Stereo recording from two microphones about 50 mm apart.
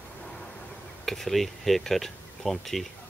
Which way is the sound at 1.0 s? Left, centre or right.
Centre.